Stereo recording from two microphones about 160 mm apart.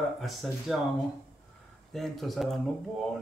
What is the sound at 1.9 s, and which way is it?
Speech, centre (ahead or behind).